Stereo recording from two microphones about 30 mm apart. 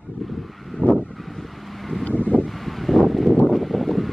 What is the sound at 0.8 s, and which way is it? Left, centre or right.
Vehicle, right.